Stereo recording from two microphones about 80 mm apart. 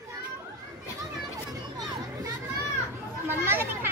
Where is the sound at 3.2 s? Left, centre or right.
Right.